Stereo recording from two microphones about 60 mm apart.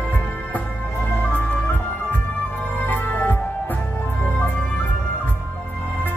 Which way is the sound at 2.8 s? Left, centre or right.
Left.